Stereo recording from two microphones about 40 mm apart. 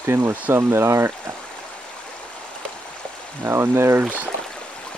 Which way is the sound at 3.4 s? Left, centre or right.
Right.